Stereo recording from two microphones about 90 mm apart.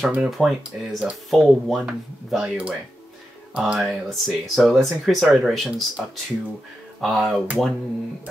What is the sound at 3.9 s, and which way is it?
Speech, centre (ahead or behind).